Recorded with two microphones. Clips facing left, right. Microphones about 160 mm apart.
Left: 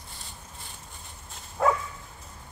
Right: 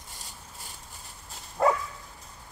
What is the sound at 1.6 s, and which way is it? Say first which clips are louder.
Dog: right 1 dB; centre (ahead or behind).